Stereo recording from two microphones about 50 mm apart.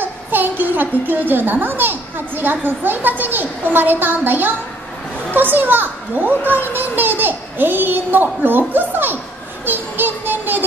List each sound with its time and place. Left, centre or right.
0.0 s a child's voice: right